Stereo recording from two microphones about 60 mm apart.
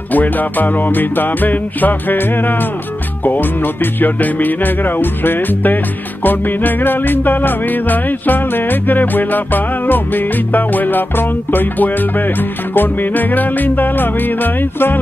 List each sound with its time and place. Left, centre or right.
0.1 s music: left